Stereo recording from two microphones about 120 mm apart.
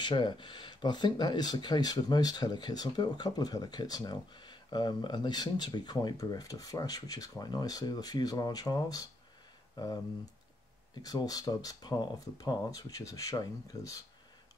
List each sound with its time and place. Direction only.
0.0 s speech: 40° left (ahead or behind)
11.0 s speech: 30° left (ahead or behind)